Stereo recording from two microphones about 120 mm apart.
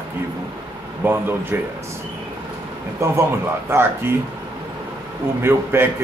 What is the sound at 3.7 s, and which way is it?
Speech, 20° right (ahead or behind).